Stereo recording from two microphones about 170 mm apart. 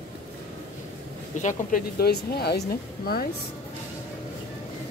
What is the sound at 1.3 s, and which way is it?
Speech, 45° left (ahead or behind).